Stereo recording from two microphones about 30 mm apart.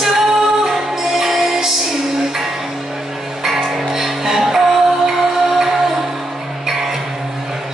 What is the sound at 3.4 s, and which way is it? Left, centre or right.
Music, centre.